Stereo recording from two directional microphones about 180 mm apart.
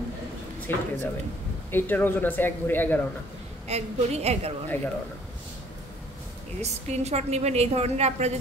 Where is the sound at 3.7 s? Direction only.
35° right (ahead or behind).